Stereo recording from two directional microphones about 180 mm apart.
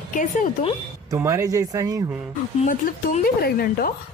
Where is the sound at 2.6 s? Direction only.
45° left (ahead or behind).